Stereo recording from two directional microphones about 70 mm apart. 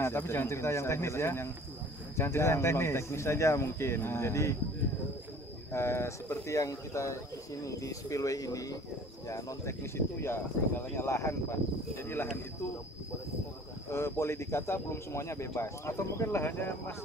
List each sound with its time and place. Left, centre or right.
0.0 s speech: left
5.7 s speech: left
9.9 s speech: left
13.8 s speech: left